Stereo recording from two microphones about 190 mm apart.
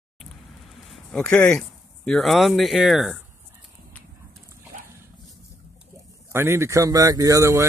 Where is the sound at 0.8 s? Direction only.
5° left (ahead or behind).